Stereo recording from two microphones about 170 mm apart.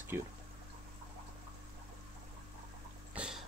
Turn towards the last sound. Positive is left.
turn(degrees=-5)  # may be behind; listen again after turning